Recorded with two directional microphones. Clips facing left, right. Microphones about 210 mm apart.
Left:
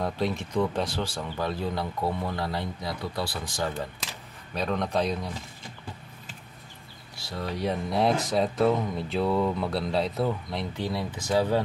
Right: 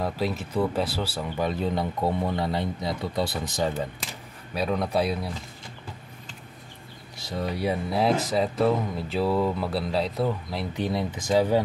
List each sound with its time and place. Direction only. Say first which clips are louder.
0.0 s speech: right 1 dB; 5° right (ahead or behind)
1.5 s speech: right 3 dB; 20° right (ahead or behind)
4.6 s speech: right 2 dB; 5° right (ahead or behind)
7.2 s speech: right 3 dB; 15° right (ahead or behind)
10.8 s speech: right 6 dB; 20° right (ahead or behind)